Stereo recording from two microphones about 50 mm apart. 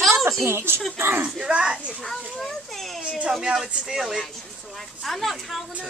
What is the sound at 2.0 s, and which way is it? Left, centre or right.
Children playing, centre.